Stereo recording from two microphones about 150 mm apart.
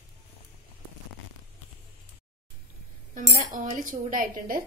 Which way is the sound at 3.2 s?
60° right (ahead or behind).